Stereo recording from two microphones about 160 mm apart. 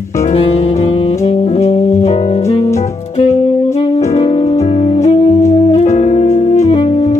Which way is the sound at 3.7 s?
40° left (ahead or behind).